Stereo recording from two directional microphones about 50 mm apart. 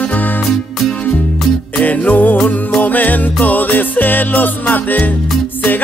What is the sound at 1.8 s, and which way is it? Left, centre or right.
Music, left.